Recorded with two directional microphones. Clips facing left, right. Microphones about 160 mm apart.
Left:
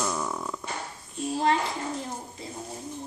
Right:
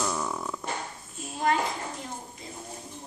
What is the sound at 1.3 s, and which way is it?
Speech, 30° left (ahead or behind).